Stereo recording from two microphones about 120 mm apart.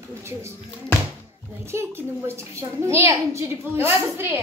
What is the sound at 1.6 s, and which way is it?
A woman's voice, 20° right (ahead or behind).